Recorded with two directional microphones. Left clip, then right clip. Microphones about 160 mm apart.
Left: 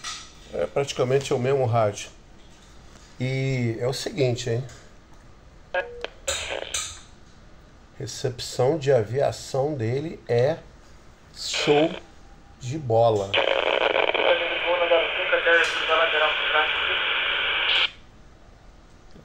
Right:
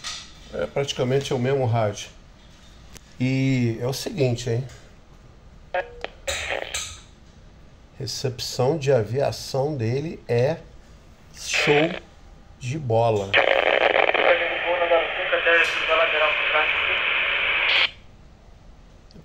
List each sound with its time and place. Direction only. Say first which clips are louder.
0.5 s speech: even; centre (ahead or behind)
3.2 s speech: right 4 dB; 5° left (ahead or behind)
5.7 s music: even; 20° right (ahead or behind)
8.0 s speech: right 1 dB; 5° left (ahead or behind)
11.5 s speech: right 1 dB; 25° right (ahead or behind)
12.6 s speech: left 1 dB; centre (ahead or behind)
13.3 s radio: right 3 dB; 25° right (ahead or behind)